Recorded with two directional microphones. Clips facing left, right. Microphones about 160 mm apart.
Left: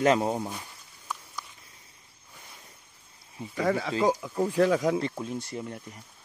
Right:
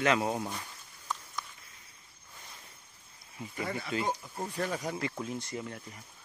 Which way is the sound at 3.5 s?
90° left.